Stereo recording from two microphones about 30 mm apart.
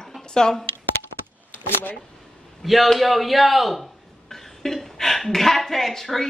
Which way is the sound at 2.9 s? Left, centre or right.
Centre.